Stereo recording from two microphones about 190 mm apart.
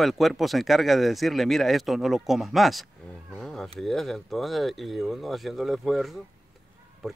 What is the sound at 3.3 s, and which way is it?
Cat, centre (ahead or behind).